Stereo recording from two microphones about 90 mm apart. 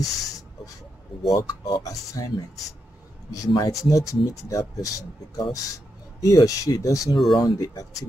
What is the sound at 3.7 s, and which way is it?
Speech, 40° left (ahead or behind).